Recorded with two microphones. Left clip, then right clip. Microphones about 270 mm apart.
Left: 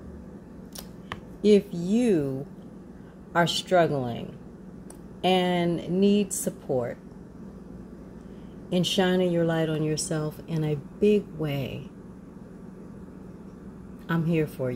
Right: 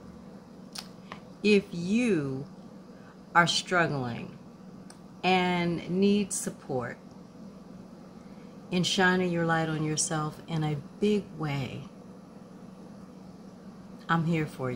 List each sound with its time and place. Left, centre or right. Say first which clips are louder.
1.4 s a woman's voice: left 4 dB; centre
3.3 s a woman's voice: left 2 dB; centre
5.2 s a woman's voice: left 2 dB; centre
5.7 s a sound: left 3 dB; right
8.7 s a woman's voice: left 1 dB; centre
14.0 s a woman's voice: left 2 dB; centre